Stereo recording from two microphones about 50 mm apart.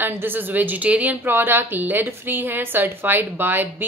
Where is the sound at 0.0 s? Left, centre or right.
Right.